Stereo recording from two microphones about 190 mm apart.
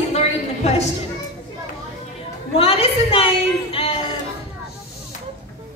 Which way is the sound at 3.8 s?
30° left (ahead or behind).